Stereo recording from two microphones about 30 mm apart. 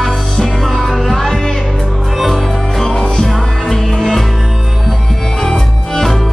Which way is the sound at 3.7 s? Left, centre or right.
Centre.